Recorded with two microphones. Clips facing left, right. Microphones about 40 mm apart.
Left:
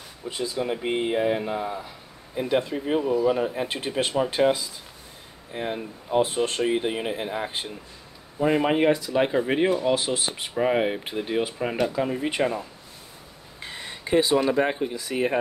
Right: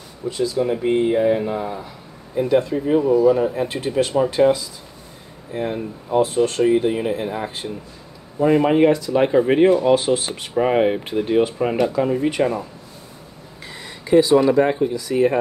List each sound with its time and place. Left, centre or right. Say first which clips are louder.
0.3 s speech: right 8 dB; left
0.6 s speech: right 7 dB; centre
2.3 s speech: right 6 dB; centre
4.4 s speech: right 5 dB; centre
6.2 s speech: right 7 dB; left; by 10.3 s centre
10.5 s speech: right 6 dB; centre
13.6 s a sound: even; left
14.3 s speech: right 7 dB; centre